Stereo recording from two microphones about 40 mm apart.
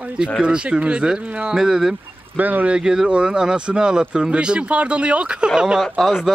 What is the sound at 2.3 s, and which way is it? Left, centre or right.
Speech, right.